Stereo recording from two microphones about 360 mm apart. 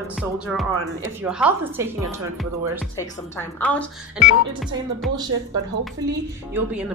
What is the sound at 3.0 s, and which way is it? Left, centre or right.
Music, centre.